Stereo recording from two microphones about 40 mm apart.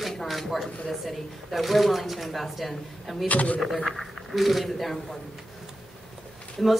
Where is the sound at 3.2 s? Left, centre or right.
Left.